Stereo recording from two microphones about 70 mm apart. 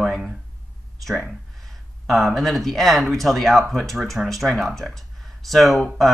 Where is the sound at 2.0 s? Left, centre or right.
Centre.